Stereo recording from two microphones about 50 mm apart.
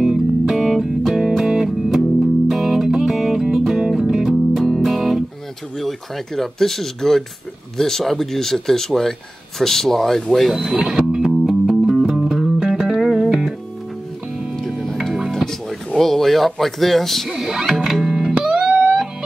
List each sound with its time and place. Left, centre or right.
0.0 s music: centre
5.8 s speech: centre
10.6 s music: centre
14.7 s music: centre
16.0 s speech: centre
17.4 s music: centre